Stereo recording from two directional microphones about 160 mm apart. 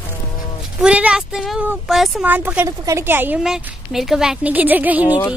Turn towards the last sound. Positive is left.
turn(degrees=-10)  # may be behind; listen again after turning